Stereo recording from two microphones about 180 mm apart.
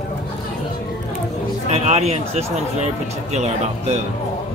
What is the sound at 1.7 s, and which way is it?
Speech, 35° right (ahead or behind).